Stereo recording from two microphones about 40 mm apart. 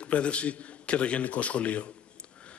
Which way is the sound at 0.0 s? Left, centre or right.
Left.